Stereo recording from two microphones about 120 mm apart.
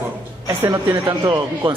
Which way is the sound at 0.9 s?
30° right (ahead or behind).